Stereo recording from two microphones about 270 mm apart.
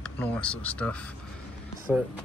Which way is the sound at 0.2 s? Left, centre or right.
Centre.